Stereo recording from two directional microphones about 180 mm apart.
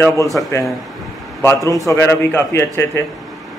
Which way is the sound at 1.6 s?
15° left (ahead or behind).